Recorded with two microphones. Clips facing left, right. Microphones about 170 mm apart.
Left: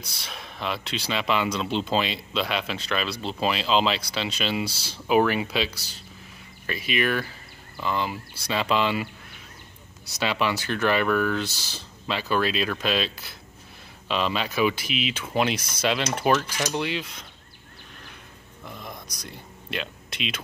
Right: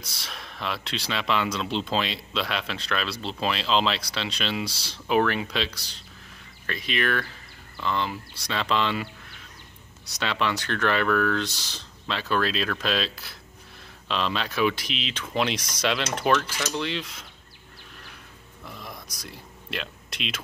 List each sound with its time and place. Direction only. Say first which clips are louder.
0.0 s speech: left 1 dB; centre (ahead or behind)
16.3 s speech: left 2 dB; 20° left (ahead or behind)
16.9 s speech: left 1 dB; centre (ahead or behind)
18.7 s a sound: left 2 dB; centre (ahead or behind)